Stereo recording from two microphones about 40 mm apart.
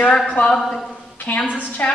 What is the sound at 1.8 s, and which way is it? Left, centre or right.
Speech, left.